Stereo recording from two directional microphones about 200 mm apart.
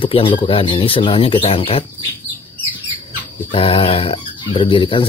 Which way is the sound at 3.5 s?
25° left (ahead or behind).